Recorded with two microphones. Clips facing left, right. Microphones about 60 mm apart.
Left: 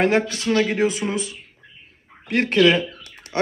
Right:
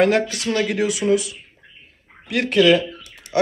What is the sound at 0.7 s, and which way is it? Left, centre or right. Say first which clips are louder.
Speech: right 3 dB; left.